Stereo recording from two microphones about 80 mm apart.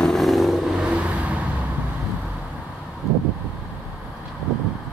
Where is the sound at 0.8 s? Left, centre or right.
Centre.